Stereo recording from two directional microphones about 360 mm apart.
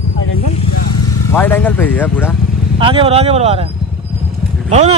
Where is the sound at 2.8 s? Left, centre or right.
Centre.